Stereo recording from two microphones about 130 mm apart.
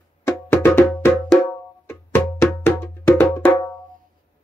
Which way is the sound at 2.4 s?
15° left (ahead or behind).